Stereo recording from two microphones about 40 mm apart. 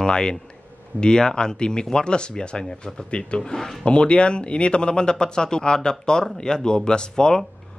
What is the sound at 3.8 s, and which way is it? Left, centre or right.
Speech, left.